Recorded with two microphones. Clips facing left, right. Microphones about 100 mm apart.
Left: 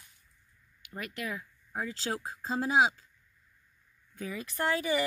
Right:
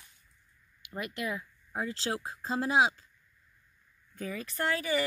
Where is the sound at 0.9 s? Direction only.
10° right (ahead or behind).